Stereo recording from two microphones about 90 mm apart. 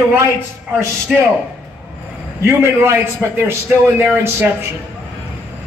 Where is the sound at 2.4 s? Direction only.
25° right (ahead or behind).